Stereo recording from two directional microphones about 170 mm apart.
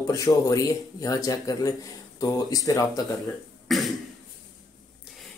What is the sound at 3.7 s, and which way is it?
Cough, centre (ahead or behind).